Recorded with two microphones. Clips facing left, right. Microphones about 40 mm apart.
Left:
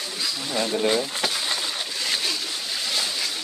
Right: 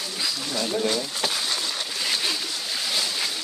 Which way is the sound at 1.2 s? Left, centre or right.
Centre.